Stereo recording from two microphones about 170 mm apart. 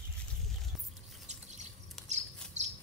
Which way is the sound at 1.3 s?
40° right (ahead or behind).